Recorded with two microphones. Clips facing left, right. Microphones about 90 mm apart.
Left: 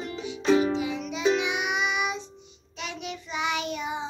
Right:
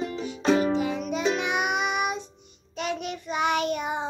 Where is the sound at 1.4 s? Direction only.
50° right (ahead or behind).